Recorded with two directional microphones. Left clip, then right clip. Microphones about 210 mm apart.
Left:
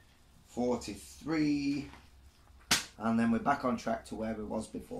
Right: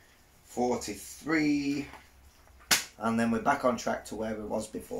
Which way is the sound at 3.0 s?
Centre (ahead or behind).